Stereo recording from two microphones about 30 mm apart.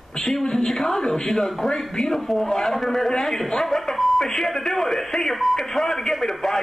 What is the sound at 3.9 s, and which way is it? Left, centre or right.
Speech, centre.